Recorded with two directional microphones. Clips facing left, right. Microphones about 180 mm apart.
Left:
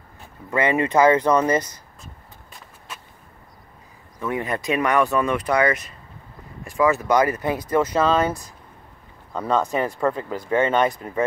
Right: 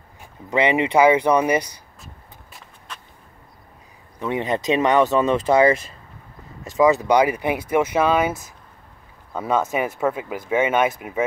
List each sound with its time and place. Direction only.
0.2 s speech: 15° right (ahead or behind)
2.9 s a sound: 5° left (ahead or behind)
4.2 s speech: 20° right (ahead or behind)
6.8 s speech: 20° right (ahead or behind)